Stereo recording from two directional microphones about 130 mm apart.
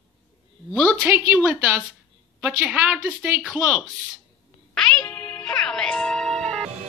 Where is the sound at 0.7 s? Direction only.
10° right (ahead or behind).